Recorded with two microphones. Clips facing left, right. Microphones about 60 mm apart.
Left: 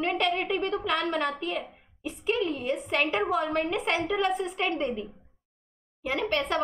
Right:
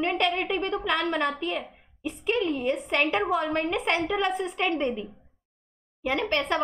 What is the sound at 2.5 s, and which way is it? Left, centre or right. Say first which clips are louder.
Speech: right 3 dB; right.